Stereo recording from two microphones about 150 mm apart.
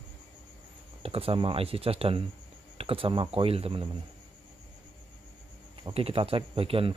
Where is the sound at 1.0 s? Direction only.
40° right (ahead or behind).